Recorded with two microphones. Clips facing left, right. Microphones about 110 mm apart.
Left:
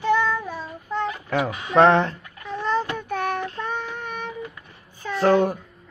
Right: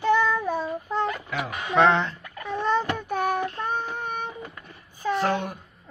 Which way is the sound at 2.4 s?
50° right (ahead or behind).